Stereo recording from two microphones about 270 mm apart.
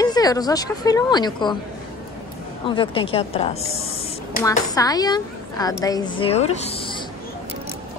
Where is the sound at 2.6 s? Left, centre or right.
Centre.